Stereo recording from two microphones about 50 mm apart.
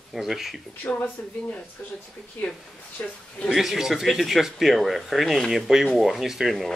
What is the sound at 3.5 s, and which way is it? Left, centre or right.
Speech, centre.